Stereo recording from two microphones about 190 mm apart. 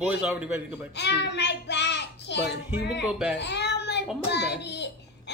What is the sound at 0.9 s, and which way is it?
A child's voice, 65° left (ahead or behind).